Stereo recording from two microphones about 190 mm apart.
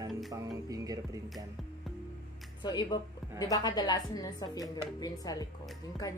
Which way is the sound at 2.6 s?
25° left (ahead or behind).